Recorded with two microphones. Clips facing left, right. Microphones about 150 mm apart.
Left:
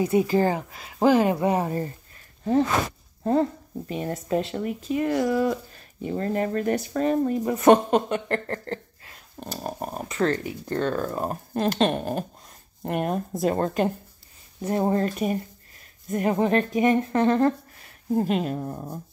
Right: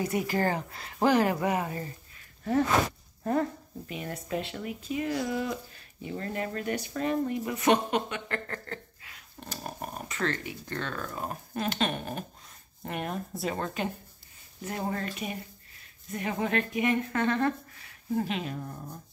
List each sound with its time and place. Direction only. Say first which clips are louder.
0.0 s speech: left 7 dB; 25° left (ahead or behind)
3.9 s speech: left 8 dB; 35° left (ahead or behind)